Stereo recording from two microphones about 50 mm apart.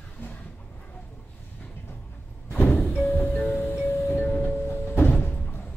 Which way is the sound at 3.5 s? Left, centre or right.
Left.